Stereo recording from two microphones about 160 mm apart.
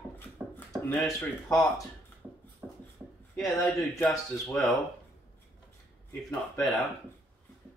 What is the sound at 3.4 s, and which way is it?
Speech, centre (ahead or behind).